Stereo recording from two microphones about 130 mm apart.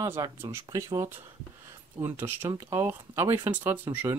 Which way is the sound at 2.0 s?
15° right (ahead or behind).